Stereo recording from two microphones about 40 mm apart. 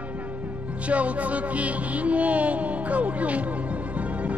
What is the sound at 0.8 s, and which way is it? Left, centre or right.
Speech, right.